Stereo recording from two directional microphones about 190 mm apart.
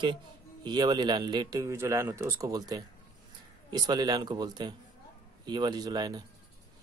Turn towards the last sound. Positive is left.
turn(degrees=-20)  # may be behind; listen again after turning